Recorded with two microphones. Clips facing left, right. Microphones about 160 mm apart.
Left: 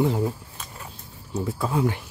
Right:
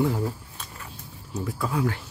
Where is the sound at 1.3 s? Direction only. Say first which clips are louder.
Left 3 dB; 25° left (ahead or behind).